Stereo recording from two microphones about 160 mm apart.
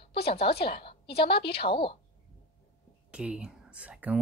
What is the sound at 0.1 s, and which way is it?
Speech, 80° left.